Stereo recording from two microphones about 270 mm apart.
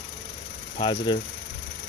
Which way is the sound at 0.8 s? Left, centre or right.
Centre.